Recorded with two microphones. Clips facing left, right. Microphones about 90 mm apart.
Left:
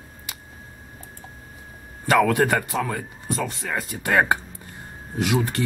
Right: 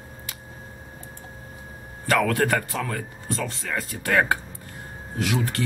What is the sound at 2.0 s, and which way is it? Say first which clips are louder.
A man's voice: left 3 dB; 20° left (ahead or behind).